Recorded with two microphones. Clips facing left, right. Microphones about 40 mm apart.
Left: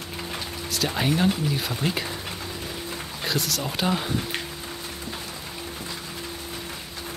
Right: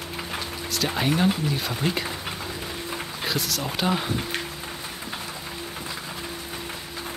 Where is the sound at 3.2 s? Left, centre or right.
Centre.